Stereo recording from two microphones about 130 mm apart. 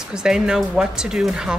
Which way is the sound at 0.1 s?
5° right (ahead or behind).